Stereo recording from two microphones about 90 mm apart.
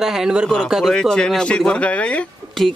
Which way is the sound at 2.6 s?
Centre (ahead or behind).